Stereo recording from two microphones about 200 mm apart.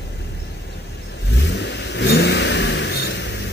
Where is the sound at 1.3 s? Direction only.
60° left (ahead or behind).